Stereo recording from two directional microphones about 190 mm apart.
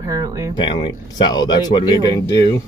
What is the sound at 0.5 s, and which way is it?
Speech, 25° left (ahead or behind).